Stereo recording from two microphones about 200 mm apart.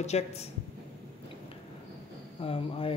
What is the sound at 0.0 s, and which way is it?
Speech, 35° left (ahead or behind).